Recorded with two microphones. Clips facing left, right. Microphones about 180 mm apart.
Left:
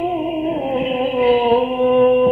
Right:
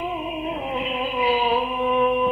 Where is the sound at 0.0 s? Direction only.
50° left (ahead or behind).